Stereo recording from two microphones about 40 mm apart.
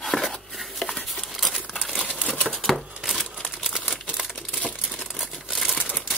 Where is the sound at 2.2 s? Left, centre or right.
Left.